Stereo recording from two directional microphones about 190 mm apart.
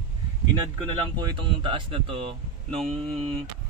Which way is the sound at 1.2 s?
25° right (ahead or behind).